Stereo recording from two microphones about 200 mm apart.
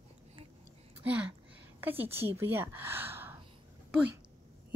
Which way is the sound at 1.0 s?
5° right (ahead or behind).